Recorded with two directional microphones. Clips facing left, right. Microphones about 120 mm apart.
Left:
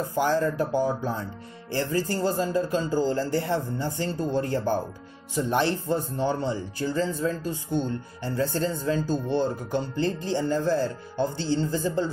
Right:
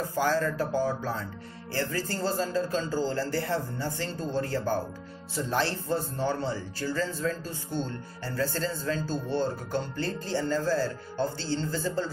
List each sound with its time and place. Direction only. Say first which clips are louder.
0.0 s speech: left 3 dB; 20° left (ahead or behind)